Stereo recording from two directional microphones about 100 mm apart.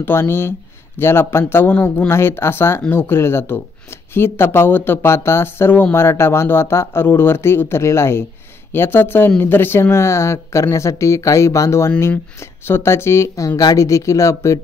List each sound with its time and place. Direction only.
0.0 s speech: 25° left (ahead or behind)